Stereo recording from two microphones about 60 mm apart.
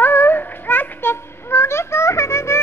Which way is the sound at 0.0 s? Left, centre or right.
Left.